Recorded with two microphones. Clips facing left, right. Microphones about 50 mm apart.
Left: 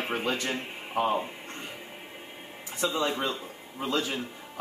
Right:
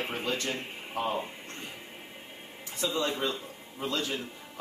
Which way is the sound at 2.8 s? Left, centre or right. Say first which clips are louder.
Left 2 dB; left.